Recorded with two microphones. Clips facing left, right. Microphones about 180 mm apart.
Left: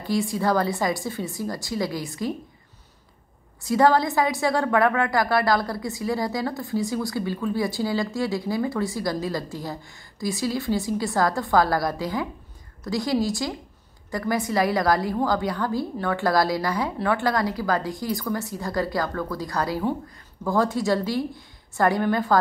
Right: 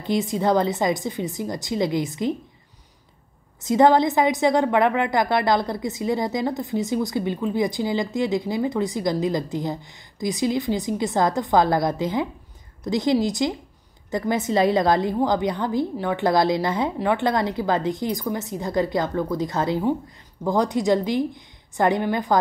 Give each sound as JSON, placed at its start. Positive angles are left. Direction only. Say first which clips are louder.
{"t": 0.0, "sound": "a woman's voice", "louder": "right 2 dB", "side_deg": -20}
{"t": 3.6, "sound": "a woman's voice", "louder": "right 3 dB", "side_deg": -20}